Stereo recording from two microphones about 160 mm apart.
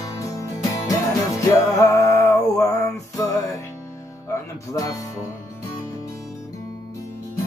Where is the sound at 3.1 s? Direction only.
20° left (ahead or behind).